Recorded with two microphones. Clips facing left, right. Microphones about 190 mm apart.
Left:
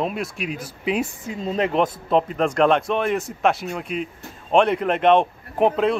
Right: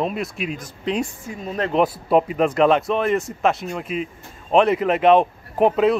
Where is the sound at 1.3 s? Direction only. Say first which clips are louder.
Left 2 dB; 20° left (ahead or behind).